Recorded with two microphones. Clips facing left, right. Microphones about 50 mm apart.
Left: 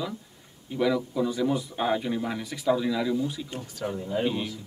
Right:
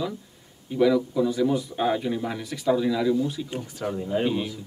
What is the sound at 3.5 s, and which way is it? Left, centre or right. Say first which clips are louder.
Speech: right 3 dB; right.